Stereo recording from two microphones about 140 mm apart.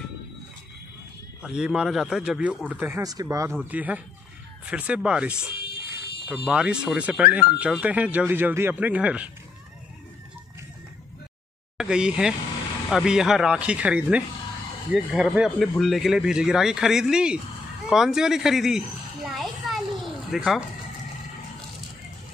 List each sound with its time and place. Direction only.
1.4 s speech: 5° right (ahead or behind)
3.0 s speech: 25° right (ahead or behind)
3.7 s speech: 10° right (ahead or behind)
11.7 s speech: 5° right (ahead or behind)
19.2 s children playing: centre (ahead or behind)